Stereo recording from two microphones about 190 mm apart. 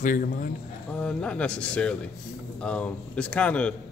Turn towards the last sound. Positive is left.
turn(degrees=5)  # may be behind; listen again after turning